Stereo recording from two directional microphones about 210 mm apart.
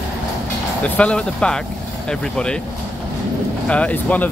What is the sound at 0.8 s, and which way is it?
Speech, 5° left (ahead or behind).